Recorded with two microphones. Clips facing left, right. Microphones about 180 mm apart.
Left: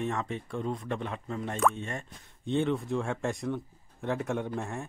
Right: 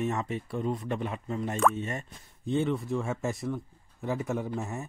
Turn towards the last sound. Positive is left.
turn(degrees=-5)  # may be behind; listen again after turning